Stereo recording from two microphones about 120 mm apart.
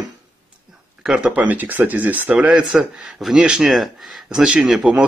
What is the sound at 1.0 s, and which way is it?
Speech, 5° right (ahead or behind).